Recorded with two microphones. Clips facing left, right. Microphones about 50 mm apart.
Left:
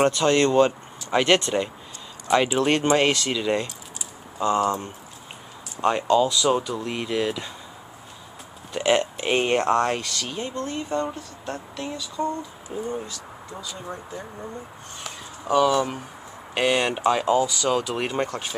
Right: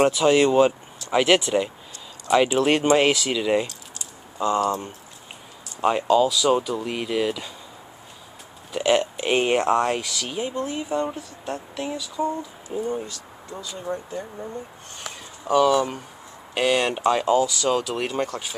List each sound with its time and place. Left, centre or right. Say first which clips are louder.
0.0 s speech: right 2 dB; centre
8.7 s speech: right 1 dB; centre
13.9 s speech: right 8 dB; centre
15.4 s speech: right 1 dB; centre
17.8 s speech: even; centre